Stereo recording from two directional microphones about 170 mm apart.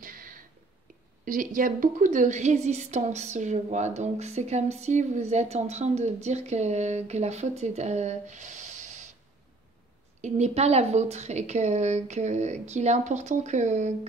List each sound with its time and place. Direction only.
0.0 s a sound: 55° right (ahead or behind)
1.2 s a woman's voice: 50° right (ahead or behind)
10.2 s a woman's voice: 40° right (ahead or behind)